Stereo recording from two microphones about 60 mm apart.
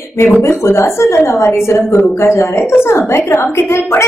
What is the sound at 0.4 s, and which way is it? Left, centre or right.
A woman's voice, left.